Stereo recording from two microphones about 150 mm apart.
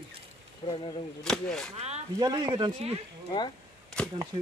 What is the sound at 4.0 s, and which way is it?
Arrow, 5° left (ahead or behind).